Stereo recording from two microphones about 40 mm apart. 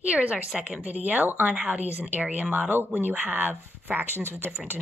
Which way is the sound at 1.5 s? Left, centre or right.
Centre.